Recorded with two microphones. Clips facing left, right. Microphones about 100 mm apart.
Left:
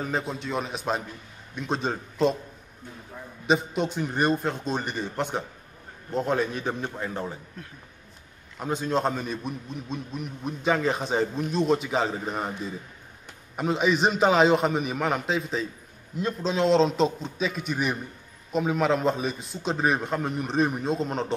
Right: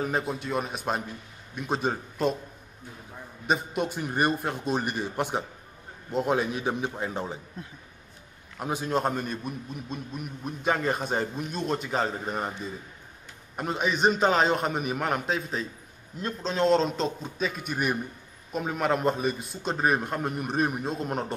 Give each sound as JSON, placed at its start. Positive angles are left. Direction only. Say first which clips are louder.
{"t": 0.0, "sound": "a man's voice", "louder": "right 1 dB", "side_deg": -5}
{"t": 3.4, "sound": "a man's voice", "louder": "left 3 dB", "side_deg": -5}
{"t": 8.5, "sound": "a man's voice", "louder": "left 1 dB", "side_deg": -5}
{"t": 13.6, "sound": "a man's voice", "louder": "left 3 dB", "side_deg": 0}